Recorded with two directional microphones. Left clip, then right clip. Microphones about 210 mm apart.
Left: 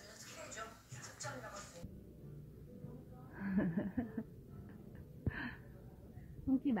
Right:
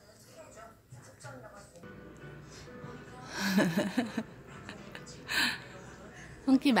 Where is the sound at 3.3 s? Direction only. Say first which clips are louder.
Right 11 dB; 20° right (ahead or behind).